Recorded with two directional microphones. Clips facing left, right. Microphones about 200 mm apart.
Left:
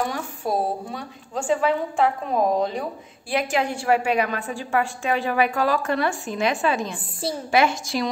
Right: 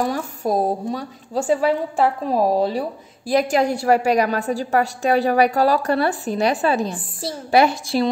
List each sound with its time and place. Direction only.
0.0 s a woman's voice: 40° right (ahead or behind)